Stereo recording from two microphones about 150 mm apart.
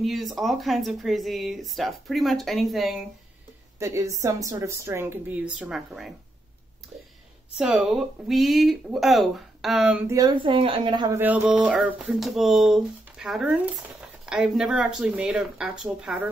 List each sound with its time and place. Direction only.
0.0 s speech: centre (ahead or behind)
3.8 s a woman's voice: 20° right (ahead or behind); by 6.1 s centre (ahead or behind)
7.5 s speech: 5° right (ahead or behind)
10.0 s a woman's voice: 25° right (ahead or behind)
11.1 s speech: 15° right (ahead or behind)